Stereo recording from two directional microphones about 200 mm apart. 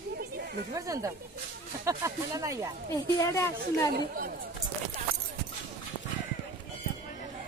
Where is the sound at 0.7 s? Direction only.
15° right (ahead or behind).